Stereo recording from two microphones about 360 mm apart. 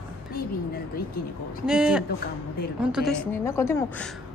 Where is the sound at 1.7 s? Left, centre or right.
Centre.